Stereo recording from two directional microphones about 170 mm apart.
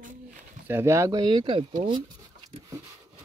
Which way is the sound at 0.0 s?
50° right (ahead or behind).